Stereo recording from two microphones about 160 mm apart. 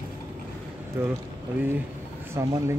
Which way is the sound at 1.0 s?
15° right (ahead or behind).